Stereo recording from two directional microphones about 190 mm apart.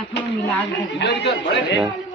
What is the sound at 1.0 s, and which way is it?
Speech, 65° left (ahead or behind).